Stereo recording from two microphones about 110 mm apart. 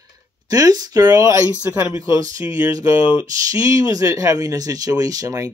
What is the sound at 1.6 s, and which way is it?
Speech, 15° right (ahead or behind).